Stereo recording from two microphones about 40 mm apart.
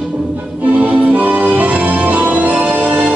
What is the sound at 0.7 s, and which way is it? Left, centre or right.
Music, right.